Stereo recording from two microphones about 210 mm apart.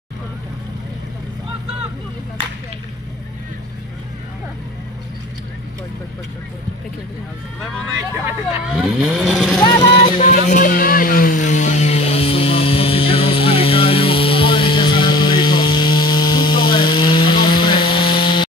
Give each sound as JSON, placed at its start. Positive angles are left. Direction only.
{"t": 8.6, "sound": "speech", "side_deg": -5}
{"t": 9.6, "sound": "vehicle", "side_deg": 20}
{"t": 10.1, "sound": "a sound", "side_deg": 40}